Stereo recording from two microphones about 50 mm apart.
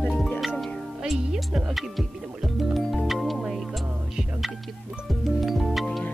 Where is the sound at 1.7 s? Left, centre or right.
Centre.